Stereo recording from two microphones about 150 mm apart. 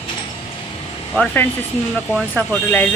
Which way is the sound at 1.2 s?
15° left (ahead or behind).